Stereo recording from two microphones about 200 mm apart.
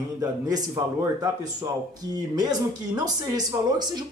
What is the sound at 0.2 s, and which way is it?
A man's voice, 20° right (ahead or behind).